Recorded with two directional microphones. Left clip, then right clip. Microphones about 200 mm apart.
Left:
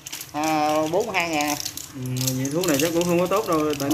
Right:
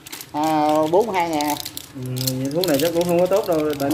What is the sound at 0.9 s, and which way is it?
Speech, 20° right (ahead or behind).